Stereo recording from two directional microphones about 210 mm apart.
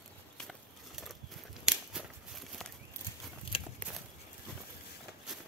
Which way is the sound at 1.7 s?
5° right (ahead or behind).